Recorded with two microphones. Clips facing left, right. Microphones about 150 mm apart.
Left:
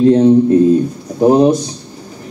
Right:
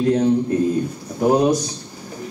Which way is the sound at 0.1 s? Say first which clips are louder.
Left 9 dB; 25° left (ahead or behind).